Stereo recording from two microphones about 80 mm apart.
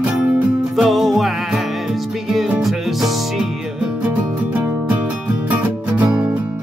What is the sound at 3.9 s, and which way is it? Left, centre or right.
Music, centre.